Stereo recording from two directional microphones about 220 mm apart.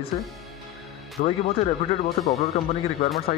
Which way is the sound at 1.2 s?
40° left (ahead or behind).